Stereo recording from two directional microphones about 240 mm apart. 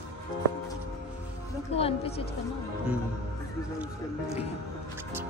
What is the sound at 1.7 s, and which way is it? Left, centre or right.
Speech, left.